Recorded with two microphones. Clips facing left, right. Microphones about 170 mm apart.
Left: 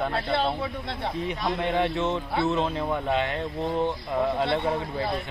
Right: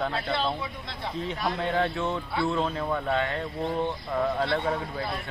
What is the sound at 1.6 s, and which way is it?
Speech, 20° left (ahead or behind).